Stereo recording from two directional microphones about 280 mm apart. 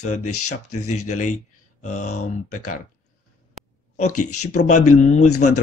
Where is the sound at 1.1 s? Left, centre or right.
Left.